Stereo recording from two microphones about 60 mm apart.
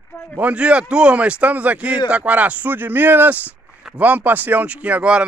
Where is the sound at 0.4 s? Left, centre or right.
Right.